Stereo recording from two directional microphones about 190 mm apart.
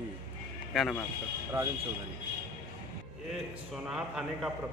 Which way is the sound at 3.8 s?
5° right (ahead or behind).